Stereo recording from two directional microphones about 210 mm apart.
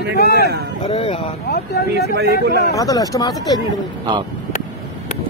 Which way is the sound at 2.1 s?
50° right (ahead or behind).